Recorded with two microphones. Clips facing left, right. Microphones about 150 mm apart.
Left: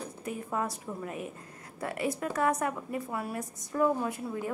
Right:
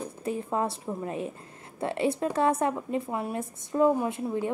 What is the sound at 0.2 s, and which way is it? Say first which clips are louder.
A woman's voice: right 5 dB; 30° right (ahead or behind).